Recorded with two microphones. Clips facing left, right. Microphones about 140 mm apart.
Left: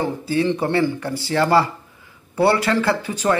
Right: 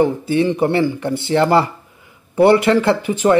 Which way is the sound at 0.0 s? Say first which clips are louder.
Right 5 dB; 20° right (ahead or behind).